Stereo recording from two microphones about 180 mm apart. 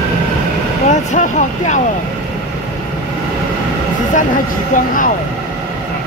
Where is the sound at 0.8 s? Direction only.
45° left (ahead or behind).